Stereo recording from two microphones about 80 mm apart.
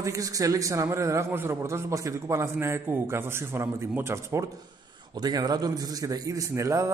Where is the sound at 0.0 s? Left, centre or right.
Right.